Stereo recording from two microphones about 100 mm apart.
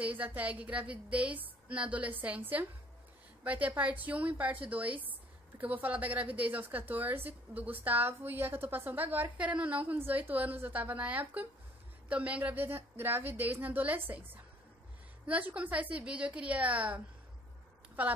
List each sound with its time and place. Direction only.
0.0 s a woman's voice: 15° right (ahead or behind)